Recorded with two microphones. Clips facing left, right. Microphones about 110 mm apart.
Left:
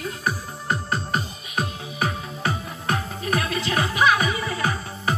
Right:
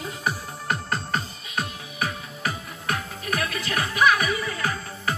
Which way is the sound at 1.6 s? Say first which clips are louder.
Left 3 dB; 30° left (ahead or behind).